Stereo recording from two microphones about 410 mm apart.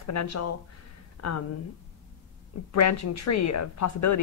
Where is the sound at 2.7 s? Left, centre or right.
Left.